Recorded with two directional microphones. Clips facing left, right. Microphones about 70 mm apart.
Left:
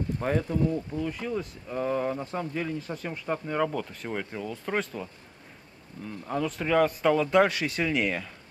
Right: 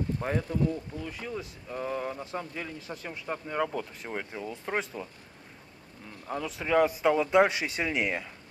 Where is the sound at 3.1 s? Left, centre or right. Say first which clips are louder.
Left 4 dB; centre.